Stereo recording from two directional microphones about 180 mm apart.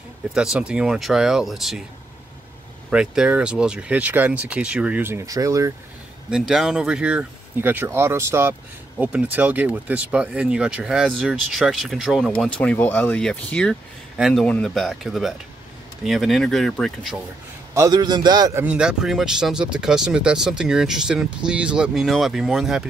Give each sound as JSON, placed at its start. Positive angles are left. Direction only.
{"t": 0.3, "sound": "speech", "side_deg": -5}
{"t": 2.9, "sound": "speech", "side_deg": -5}
{"t": 6.3, "sound": "speech", "side_deg": 0}
{"t": 17.7, "sound": "a man's voice", "side_deg": -20}
{"t": 18.6, "sound": "speech", "side_deg": -5}